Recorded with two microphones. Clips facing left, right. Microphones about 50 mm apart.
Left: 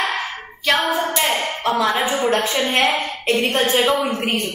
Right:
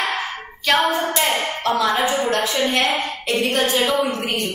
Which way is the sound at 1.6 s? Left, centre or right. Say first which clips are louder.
Left 1 dB; centre.